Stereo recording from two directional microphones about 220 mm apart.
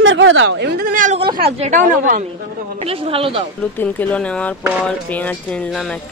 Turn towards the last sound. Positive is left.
turn(degrees=5)  # may be behind; listen again after turning